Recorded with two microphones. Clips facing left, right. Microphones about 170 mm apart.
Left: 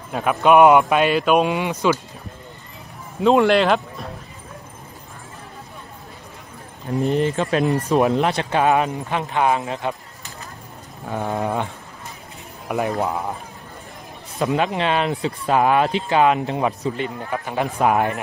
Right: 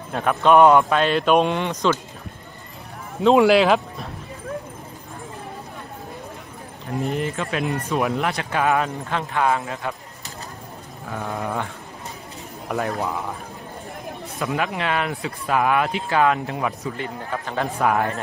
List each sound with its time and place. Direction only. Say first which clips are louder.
0.1 s speech: left 1 dB; 5° left (ahead or behind)
3.2 s speech: right 1 dB; centre (ahead or behind)
7.2 s speech: left 5 dB; 35° left (ahead or behind)
8.1 s speech: left 4 dB; 25° left (ahead or behind)
11.1 s speech: left 5 dB; 35° left (ahead or behind)
11.4 s speech: left 3 dB; 20° left (ahead or behind)
14.4 s speech: left 4 dB; 20° left (ahead or behind)